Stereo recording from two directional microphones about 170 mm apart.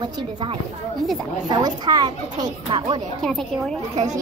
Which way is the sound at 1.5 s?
25° right (ahead or behind).